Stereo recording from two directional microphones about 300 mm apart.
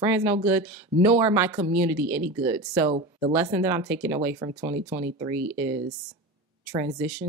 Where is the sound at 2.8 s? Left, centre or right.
Centre.